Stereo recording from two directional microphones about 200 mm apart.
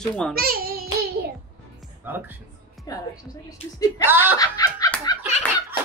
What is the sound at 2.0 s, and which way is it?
Music, 10° right (ahead or behind).